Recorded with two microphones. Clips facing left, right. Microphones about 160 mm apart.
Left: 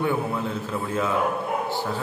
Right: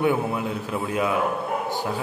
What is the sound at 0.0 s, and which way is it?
A man's voice, 15° right (ahead or behind).